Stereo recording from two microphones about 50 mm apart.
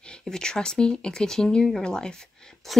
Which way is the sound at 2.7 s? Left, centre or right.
Centre.